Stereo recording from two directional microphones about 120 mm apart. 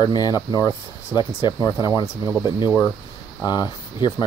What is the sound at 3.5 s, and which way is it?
Speech, 35° left (ahead or behind).